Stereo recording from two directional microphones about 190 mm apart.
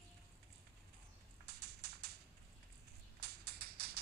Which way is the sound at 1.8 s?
60° right (ahead or behind).